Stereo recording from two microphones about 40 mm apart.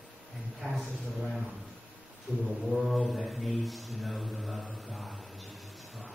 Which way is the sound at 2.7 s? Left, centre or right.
Centre.